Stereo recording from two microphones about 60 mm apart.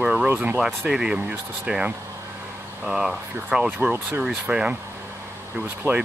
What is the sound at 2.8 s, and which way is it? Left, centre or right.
Speech, centre.